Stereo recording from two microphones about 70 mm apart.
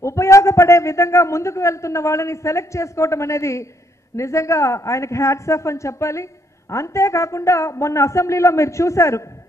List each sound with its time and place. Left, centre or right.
0.0 s a man's voice: left